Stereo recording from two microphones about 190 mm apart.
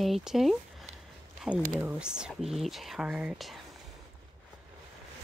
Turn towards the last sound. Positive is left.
turn(degrees=0)  # may be behind; listen again after turning